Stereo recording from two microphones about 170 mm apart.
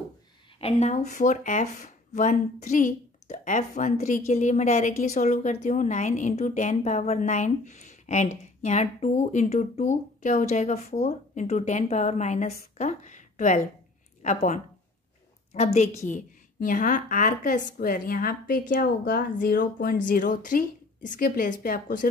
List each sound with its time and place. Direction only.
0.6 s a woman's voice: 35° left (ahead or behind)
16.1 s a woman's voice: 50° left (ahead or behind)